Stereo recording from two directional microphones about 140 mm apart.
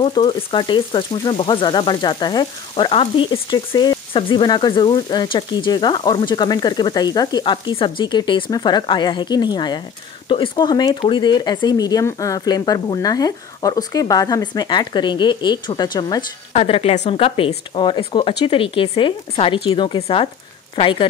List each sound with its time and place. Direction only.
0.0 s frying: 30° left (ahead or behind)
16.5 s frying: 45° left (ahead or behind)
20.0 s speech: 45° left (ahead or behind)
20.7 s frying: 40° left (ahead or behind)